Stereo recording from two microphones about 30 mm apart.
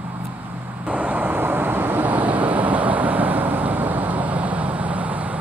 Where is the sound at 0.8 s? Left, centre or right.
Right.